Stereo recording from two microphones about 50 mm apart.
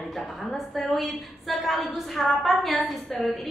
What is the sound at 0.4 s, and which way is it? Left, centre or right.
A woman's voice, centre.